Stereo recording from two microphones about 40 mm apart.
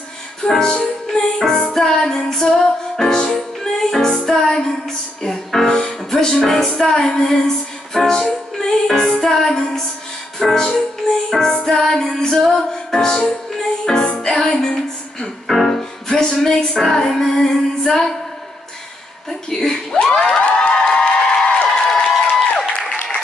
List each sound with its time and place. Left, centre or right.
0.5 s music: centre
7.0 s music: left
7.2 s music: centre
15.4 s music: centre
19.5 s music: centre
20.2 s a sound: left; by 22.1 s centre
22.2 s a sound: left